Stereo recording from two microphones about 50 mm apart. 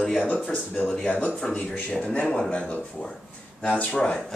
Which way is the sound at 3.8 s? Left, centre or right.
Centre.